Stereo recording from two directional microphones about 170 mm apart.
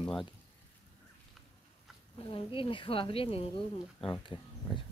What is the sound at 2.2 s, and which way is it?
Speech, 30° left (ahead or behind).